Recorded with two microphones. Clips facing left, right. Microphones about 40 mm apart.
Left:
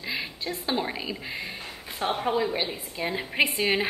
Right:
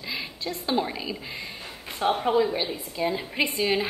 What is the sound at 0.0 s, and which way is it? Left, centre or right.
A woman's voice, centre.